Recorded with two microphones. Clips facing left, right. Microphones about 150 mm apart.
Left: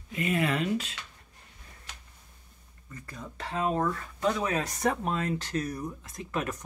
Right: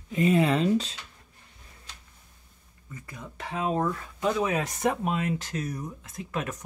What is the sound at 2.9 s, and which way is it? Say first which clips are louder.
Speech: even; 10° right (ahead or behind).